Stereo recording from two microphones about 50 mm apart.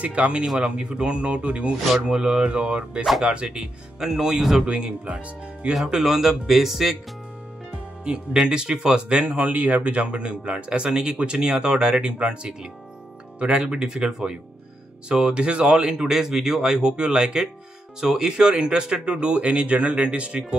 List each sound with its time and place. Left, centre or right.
0.0 s speech: right
4.6 s speech: right
5.7 s speech: centre
8.0 s speech: right
9.2 s speech: right